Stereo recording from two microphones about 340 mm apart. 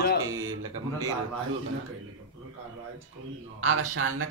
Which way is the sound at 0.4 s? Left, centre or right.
Right.